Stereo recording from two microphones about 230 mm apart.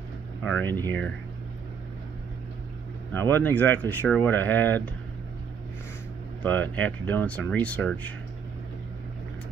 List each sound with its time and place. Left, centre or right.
0.4 s speech: centre
3.1 s speech: centre
6.4 s speech: centre